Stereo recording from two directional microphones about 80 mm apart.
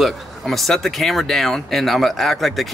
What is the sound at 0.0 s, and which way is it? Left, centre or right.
Speech, centre.